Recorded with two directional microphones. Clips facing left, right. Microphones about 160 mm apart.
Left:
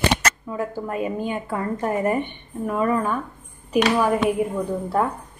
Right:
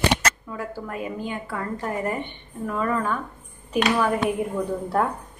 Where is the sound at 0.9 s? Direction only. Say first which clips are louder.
Left 4 dB; 25° left (ahead or behind).